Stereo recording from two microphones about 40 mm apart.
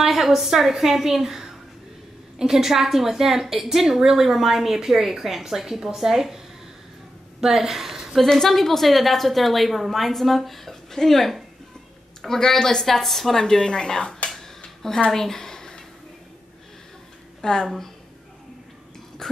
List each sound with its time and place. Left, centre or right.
0.0 s a woman's voice: centre
8.2 s a woman's voice: centre
15.0 s a sound: centre
17.4 s speech: centre
19.2 s dog: centre